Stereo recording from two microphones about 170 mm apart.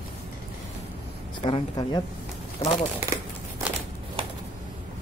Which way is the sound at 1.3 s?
25° left (ahead or behind).